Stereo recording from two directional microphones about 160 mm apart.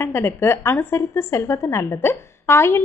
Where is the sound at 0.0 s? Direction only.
15° left (ahead or behind).